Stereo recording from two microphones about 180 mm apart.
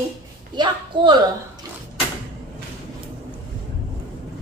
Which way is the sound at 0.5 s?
25° right (ahead or behind).